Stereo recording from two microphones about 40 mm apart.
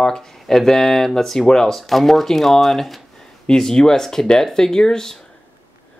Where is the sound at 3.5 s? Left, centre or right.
Centre.